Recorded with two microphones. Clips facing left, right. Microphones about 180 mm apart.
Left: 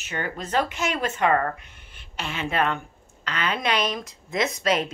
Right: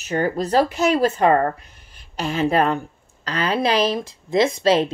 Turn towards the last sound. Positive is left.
turn(degrees=-30)  # may be behind; listen again after turning